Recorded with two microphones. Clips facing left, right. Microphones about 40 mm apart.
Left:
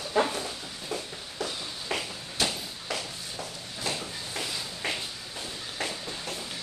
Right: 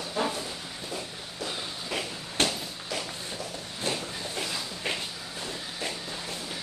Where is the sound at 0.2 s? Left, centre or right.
Left.